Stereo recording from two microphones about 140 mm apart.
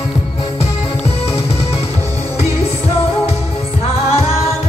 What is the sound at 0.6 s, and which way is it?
Music, 45° left (ahead or behind).